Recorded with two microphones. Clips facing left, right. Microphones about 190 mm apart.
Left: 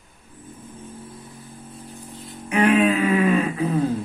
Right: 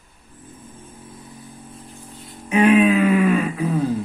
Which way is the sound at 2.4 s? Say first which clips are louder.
Right 3 dB; 20° right (ahead or behind).